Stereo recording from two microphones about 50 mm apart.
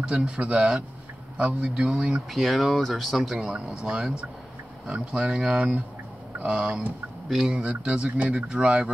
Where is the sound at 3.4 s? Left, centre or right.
Centre.